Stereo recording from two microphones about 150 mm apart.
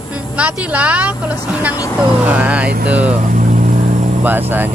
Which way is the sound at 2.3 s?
10° right (ahead or behind).